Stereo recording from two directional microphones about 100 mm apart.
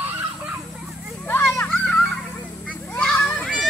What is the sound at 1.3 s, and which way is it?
Children playing, 20° left (ahead or behind).